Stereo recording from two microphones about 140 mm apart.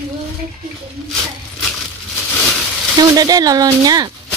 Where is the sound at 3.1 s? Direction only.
25° right (ahead or behind).